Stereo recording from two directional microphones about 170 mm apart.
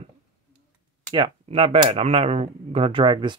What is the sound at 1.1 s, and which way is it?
Speech, 30° right (ahead or behind).